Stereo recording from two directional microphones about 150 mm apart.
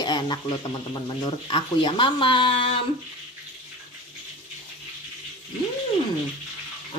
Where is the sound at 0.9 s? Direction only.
25° left (ahead or behind).